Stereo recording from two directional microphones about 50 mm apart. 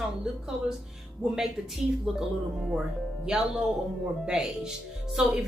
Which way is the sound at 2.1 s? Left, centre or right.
Centre.